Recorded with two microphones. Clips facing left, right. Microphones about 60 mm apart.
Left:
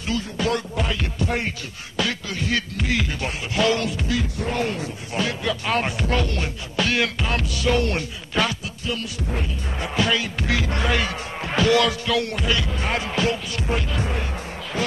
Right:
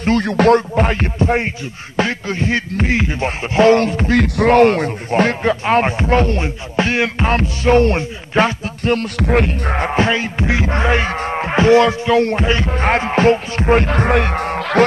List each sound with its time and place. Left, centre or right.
0.0 s music: right
0.6 s music: right
4.2 s music: right
8.8 s music: right
9.3 s music: right
9.8 s music: right